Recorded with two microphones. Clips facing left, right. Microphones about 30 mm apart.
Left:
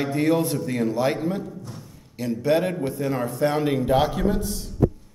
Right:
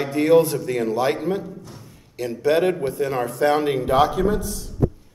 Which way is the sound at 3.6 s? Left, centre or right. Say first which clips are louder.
Right 2 dB; centre.